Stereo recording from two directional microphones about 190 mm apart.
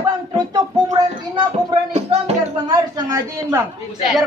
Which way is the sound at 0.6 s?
20° right (ahead or behind).